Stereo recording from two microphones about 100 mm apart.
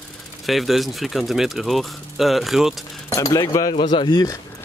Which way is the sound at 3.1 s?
35° left (ahead or behind).